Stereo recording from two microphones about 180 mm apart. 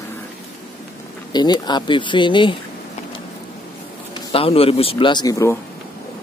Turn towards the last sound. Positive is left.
turn(degrees=15)  # may be behind; listen again after turning